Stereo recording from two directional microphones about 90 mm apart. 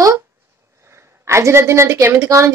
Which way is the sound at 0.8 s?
30° right (ahead or behind).